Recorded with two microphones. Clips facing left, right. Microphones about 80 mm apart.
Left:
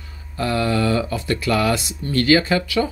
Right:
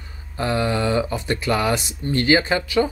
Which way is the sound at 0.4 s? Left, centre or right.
Right.